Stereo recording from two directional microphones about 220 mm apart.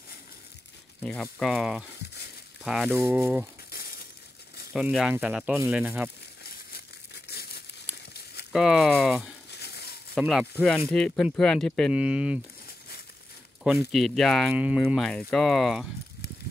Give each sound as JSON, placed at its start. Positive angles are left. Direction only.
{"t": 1.0, "sound": "speech", "side_deg": 0}
{"t": 2.9, "sound": "speech", "side_deg": -10}
{"t": 3.7, "sound": "crushing", "side_deg": 45}
{"t": 4.7, "sound": "speech", "side_deg": 0}
{"t": 7.2, "sound": "crumpling", "side_deg": 45}
{"t": 7.9, "sound": "a sound", "side_deg": -5}
{"t": 8.5, "sound": "speech", "side_deg": 0}
{"t": 9.5, "sound": "a sound", "side_deg": 50}
{"t": 10.1, "sound": "speech", "side_deg": 0}
{"t": 13.7, "sound": "speech", "side_deg": 0}